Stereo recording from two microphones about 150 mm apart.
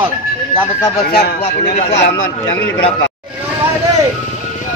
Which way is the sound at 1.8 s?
50° left (ahead or behind).